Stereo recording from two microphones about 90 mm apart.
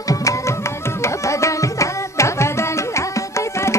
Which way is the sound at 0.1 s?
40° left (ahead or behind).